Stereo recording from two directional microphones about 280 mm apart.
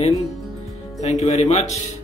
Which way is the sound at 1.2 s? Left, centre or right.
Left.